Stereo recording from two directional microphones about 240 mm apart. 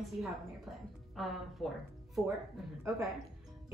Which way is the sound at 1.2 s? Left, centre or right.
Centre.